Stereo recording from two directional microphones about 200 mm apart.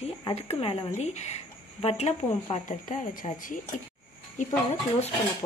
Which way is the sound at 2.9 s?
40° left (ahead or behind).